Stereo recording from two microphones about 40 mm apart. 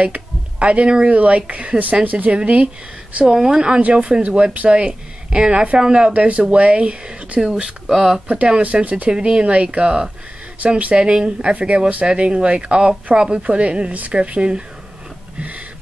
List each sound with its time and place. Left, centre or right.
0.0 s a woman's voice: right
3.3 s speech: centre
7.4 s speech: centre
8.3 s speech: right
8.8 s a woman's voice: right
9.1 s speech: right
10.6 s a woman's voice: right
15.3 s a sound: right